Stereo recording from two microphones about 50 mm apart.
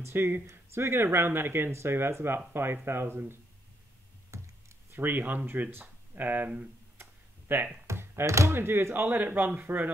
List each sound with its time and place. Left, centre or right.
0.0 s speech: right
4.3 s computer keyboard: right
4.9 s speech: right
7.0 s a sound: right
7.8 s computer keyboard: right
8.3 s speech: right
8.5 s speech: right